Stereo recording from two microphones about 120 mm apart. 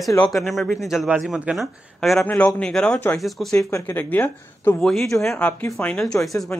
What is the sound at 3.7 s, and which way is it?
Speech, 20° left (ahead or behind).